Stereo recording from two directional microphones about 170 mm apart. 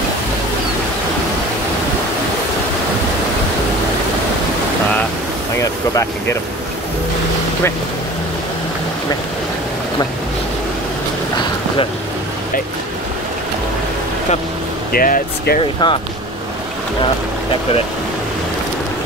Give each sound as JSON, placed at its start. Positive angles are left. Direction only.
{"t": 5.6, "sound": "speech", "side_deg": 20}
{"t": 14.9, "sound": "speech", "side_deg": 55}
{"t": 15.8, "sound": "speech", "side_deg": 25}